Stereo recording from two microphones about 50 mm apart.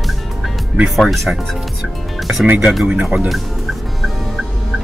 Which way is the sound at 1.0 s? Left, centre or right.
Centre.